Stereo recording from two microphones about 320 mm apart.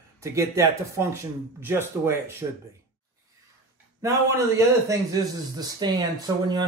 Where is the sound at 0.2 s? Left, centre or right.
Centre.